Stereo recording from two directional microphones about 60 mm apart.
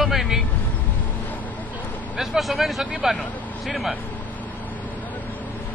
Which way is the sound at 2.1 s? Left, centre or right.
Centre.